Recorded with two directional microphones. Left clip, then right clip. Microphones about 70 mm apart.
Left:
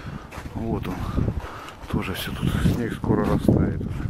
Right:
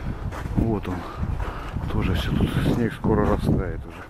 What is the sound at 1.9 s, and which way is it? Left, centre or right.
Speech, left.